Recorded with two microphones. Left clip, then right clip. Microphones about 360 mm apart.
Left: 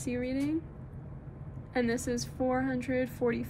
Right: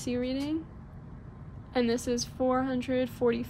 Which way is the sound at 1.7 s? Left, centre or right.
Right.